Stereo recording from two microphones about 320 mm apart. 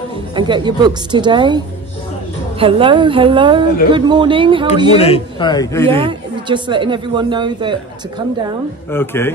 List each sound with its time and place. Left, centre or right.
0.4 s speech: centre
2.6 s speech: centre
4.8 s a man's voice: centre
5.9 s speech: centre
8.9 s a man's voice: centre